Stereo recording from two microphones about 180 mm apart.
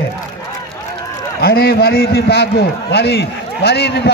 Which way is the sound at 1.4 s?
60° left (ahead or behind).